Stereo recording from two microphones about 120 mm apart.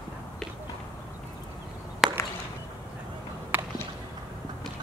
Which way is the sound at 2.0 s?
5° right (ahead or behind).